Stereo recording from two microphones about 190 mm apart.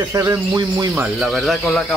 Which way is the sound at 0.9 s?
Centre (ahead or behind).